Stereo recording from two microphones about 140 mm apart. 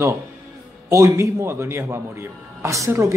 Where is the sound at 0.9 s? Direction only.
20° right (ahead or behind).